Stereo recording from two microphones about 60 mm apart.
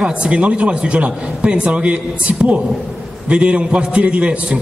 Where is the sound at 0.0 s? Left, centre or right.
Centre.